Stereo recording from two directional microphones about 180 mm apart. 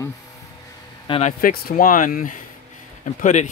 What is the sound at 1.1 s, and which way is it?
Speech, 35° left (ahead or behind).